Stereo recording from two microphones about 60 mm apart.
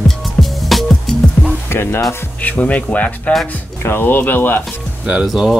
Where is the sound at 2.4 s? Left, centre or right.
Left.